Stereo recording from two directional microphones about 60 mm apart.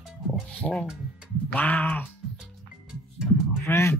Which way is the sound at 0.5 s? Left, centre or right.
Left.